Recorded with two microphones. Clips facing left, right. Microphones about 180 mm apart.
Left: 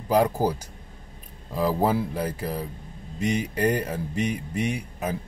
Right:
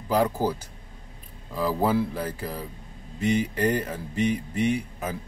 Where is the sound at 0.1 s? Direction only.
15° left (ahead or behind).